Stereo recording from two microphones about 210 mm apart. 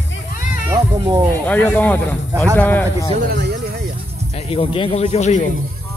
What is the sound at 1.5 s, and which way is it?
Speech, 10° left (ahead or behind).